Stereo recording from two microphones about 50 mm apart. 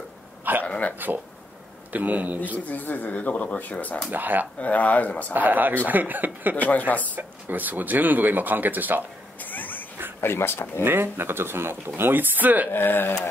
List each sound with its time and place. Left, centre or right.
0.7 s speech: left
0.9 s speech: right
2.7 s speech: left
4.1 s speech: right
4.6 s speech: left
5.3 s speech: right
6.5 s speech: left
7.0 s speech: right
9.4 s a sound: left
10.2 s speech: left
10.8 s speech: right
12.7 s speech: left